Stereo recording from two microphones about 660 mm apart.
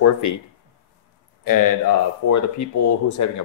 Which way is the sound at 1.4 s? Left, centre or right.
Left.